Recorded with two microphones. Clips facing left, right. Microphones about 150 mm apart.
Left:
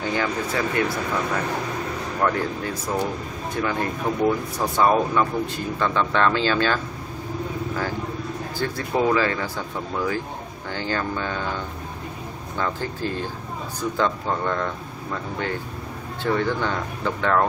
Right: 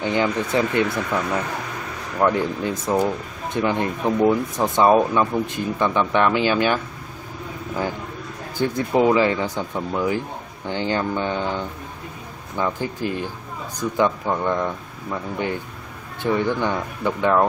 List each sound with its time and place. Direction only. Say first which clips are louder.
0.0 s speech: right 3 dB; 20° right (ahead or behind)
2.2 s speech: right 4 dB; 20° right (ahead or behind)
8.5 s speech: right 5 dB; 20° right (ahead or behind)
16.2 s speech: right 2 dB; 15° right (ahead or behind)